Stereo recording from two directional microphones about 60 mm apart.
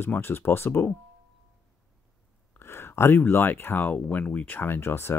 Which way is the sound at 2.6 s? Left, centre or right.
Left.